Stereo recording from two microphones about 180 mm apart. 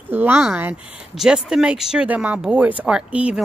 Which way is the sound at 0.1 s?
10° right (ahead or behind).